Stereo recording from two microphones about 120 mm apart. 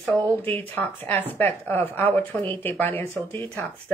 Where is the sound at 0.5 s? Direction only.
15° left (ahead or behind).